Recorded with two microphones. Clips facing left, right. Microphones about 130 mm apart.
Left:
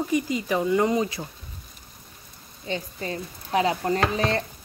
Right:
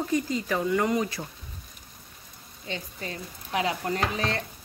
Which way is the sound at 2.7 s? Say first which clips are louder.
Left 5 dB; 35° left (ahead or behind).